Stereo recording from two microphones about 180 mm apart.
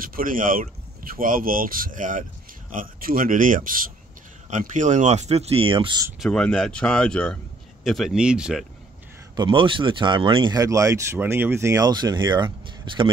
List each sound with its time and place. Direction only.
0.0 s speech: 50° right (ahead or behind); by 6.0 s 25° right (ahead or behind)
6.1 s speech: centre (ahead or behind)
9.3 s speech: 25° right (ahead or behind)